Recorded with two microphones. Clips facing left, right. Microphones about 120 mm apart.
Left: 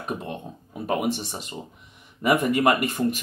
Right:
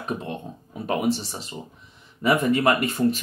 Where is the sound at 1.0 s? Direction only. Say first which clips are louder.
Right 2 dB; 15° left (ahead or behind).